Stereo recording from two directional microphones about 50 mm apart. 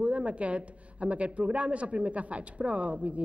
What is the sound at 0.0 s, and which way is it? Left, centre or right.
A woman's voice, right.